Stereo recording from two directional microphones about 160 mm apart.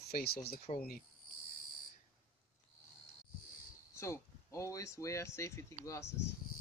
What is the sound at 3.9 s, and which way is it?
Speech, 15° left (ahead or behind).